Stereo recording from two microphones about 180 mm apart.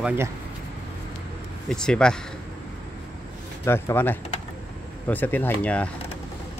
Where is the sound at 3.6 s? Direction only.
15° left (ahead or behind).